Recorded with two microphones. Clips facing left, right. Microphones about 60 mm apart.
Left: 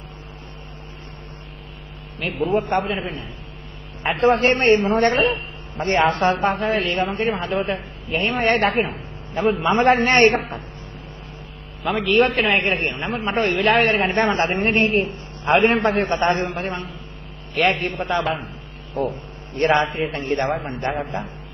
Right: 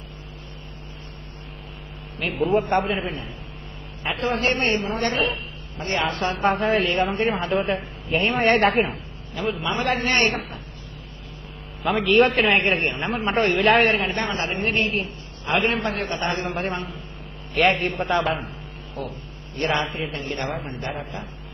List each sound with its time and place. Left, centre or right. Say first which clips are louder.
2.1 s a man's voice: even; centre
4.0 s a woman's voice: left 7 dB; left
6.4 s a man's voice: even; centre
9.3 s a woman's voice: left 7 dB; left
11.8 s a man's voice: even; centre
14.0 s a woman's voice: left 6 dB; left
14.7 s a man's voice: left 3 dB; left
15.0 s a woman's voice: left 7 dB; left
16.4 s a man's voice: even; centre
19.0 s a woman's voice: left 9 dB; left
19.7 s a man's voice: left 6 dB; left
20.1 s a woman's voice: left 6 dB; left